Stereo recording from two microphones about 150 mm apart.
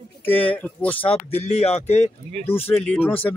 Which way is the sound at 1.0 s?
40° left (ahead or behind).